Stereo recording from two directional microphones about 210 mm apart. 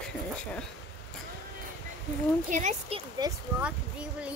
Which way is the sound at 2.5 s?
35° right (ahead or behind).